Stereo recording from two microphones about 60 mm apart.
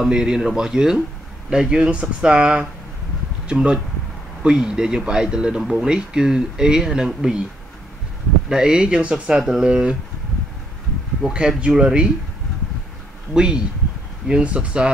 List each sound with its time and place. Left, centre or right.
0.0 s speech: centre
8.5 s speech: centre
11.2 s speech: centre
13.3 s speech: centre